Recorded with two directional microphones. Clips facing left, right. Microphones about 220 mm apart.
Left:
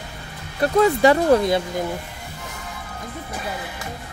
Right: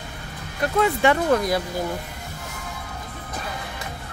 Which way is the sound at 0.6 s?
35° left (ahead or behind).